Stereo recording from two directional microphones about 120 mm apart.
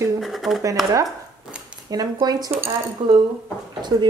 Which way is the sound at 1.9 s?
30° right (ahead or behind).